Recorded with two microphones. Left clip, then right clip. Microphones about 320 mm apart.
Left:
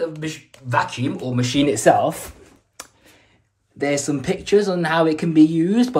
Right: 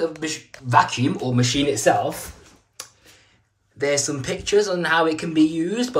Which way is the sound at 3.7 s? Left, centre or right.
Centre.